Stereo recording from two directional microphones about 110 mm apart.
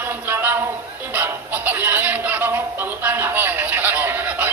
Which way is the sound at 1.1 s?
15° right (ahead or behind).